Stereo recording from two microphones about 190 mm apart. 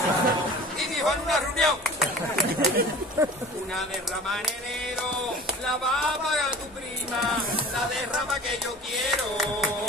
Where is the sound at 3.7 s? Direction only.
Centre (ahead or behind).